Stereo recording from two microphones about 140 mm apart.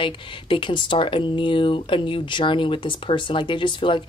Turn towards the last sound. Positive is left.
turn(degrees=35)  # may be behind; listen again after turning